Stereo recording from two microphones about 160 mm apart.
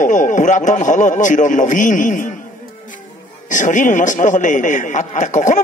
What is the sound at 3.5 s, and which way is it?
Speech, 50° left (ahead or behind).